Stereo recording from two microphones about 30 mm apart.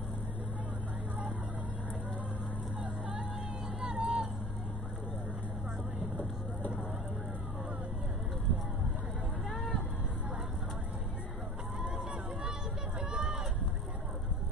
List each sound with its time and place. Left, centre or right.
3.8 s vehicle: right
9.5 s vehicle: centre
11.8 s run: right